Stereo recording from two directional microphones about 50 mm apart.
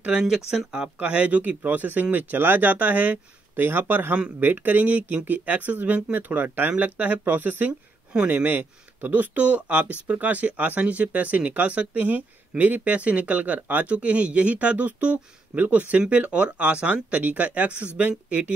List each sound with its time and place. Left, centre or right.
0.2 s speech: centre
0.9 s speech: right
8.1 s speech: right